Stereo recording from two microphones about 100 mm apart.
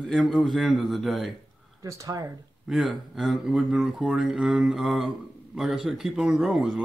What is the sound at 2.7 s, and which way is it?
Speech, centre (ahead or behind).